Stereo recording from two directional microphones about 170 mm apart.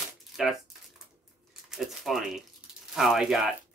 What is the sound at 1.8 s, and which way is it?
Speech, centre (ahead or behind).